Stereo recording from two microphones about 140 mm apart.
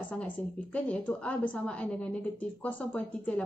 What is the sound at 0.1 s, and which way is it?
A woman's voice, 10° left (ahead or behind).